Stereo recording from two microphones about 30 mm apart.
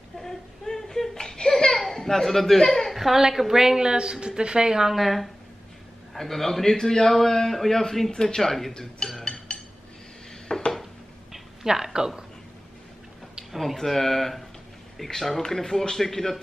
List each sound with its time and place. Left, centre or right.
0.7 s a sound: centre
1.1 s laughter: left
1.7 s a sound: centre
2.9 s a woman's voice: centre; by 4.8 s right
4.9 s a man's voice: centre
6.8 s speech: left
7.1 s a man's voice: centre
8.1 s speech: left
8.4 s a man's voice: centre
9.2 s a sound: left
10.5 s dishes: left
11.6 s a woman's voice: centre
13.5 s speech: centre
13.9 s a man's voice: centre